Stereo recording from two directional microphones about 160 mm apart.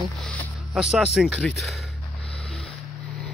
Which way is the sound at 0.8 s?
5° right (ahead or behind).